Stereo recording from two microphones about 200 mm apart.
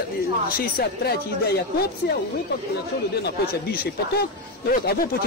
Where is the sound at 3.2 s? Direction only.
50° left (ahead or behind).